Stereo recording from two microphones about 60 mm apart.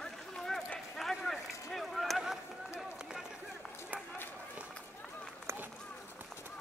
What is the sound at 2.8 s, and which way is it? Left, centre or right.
Run, centre.